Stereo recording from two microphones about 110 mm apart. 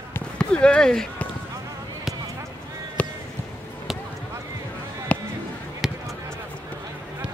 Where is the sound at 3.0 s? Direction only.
10° left (ahead or behind).